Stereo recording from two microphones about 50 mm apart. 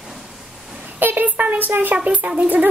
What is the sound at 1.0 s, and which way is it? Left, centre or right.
A woman's voice, right.